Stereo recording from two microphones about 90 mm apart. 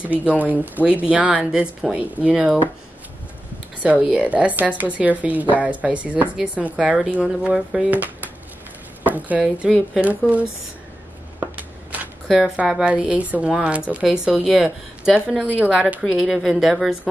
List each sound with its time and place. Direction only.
0.0 s a woman's voice: 15° right (ahead or behind)
3.8 s a woman's voice: 15° right (ahead or behind)
11.3 s a sound: 20° right (ahead or behind)
12.3 s a woman's voice: 5° right (ahead or behind)
16.0 s speech: centre (ahead or behind)